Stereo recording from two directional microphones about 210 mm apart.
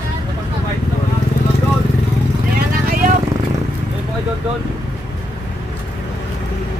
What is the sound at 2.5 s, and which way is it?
Vehicle, 45° right (ahead or behind).